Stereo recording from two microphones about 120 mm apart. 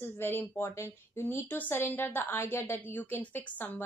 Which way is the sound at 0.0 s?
20° left (ahead or behind).